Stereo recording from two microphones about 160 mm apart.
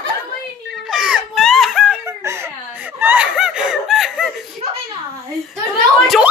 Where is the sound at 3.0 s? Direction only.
10° right (ahead or behind).